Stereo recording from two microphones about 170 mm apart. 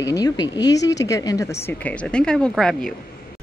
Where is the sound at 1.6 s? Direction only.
10° left (ahead or behind).